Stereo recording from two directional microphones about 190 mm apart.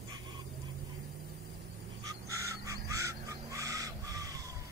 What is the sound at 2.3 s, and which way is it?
Crow, 15° right (ahead or behind).